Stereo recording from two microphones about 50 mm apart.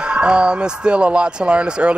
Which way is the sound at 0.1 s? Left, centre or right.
Centre.